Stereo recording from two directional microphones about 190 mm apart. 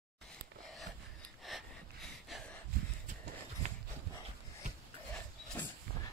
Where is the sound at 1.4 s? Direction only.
Centre (ahead or behind).